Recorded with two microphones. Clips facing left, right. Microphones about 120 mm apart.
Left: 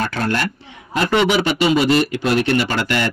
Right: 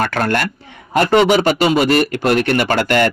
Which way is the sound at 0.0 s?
60° right (ahead or behind).